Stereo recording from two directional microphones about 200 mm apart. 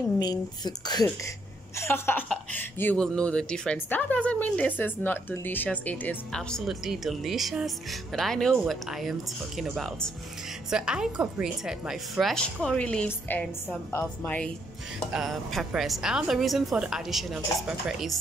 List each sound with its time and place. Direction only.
0.2 s a woman's voice: 20° left (ahead or behind); by 18.1 s centre (ahead or behind)